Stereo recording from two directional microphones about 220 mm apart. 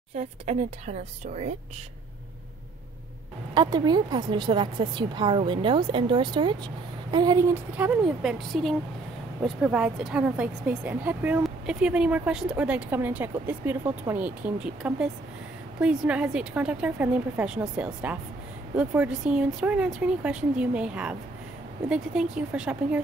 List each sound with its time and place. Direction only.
0.1 s speech: 30° right (ahead or behind)
3.5 s a woman's voice: 20° right (ahead or behind)